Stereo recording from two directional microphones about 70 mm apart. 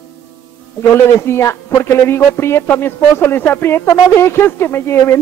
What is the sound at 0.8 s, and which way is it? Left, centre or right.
Speech, left.